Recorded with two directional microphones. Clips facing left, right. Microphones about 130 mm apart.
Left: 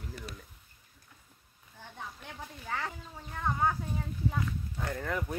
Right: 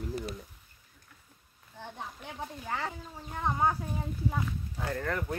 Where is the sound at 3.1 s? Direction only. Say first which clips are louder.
Right 1 dB; 15° right (ahead or behind).